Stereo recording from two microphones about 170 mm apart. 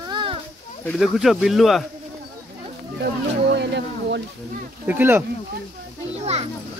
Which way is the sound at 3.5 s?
90° right.